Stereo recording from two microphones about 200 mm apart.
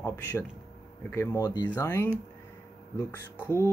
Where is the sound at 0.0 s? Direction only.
10° left (ahead or behind).